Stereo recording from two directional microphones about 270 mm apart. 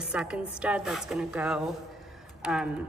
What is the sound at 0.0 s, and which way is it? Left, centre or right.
A woman's voice, centre.